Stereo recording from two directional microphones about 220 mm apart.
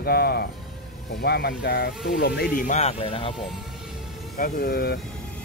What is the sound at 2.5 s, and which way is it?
Speech, 35° left (ahead or behind).